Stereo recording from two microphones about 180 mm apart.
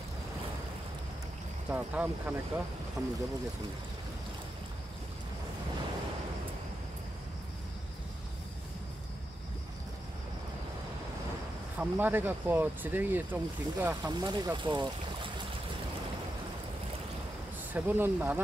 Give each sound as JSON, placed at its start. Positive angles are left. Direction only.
{"t": 1.7, "sound": "speech", "side_deg": -10}
{"t": 11.8, "sound": "speech", "side_deg": -10}
{"t": 14.0, "sound": "speech", "side_deg": -25}
{"t": 17.7, "sound": "speech", "side_deg": -10}